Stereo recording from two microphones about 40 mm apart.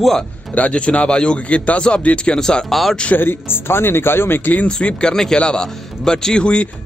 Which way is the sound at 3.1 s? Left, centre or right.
Left.